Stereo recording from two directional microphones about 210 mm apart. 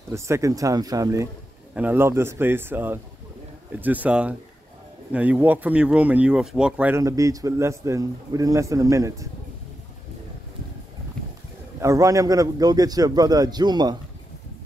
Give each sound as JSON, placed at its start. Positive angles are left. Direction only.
{"t": 0.1, "sound": "speech", "side_deg": -15}
{"t": 11.8, "sound": "speech", "side_deg": -15}